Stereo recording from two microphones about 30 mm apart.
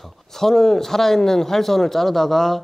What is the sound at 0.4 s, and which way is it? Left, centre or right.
A man's voice, centre.